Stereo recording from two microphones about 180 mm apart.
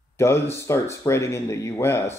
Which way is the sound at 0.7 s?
15° left (ahead or behind).